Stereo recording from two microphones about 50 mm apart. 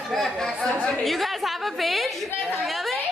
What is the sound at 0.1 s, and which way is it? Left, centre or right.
Chatter, centre.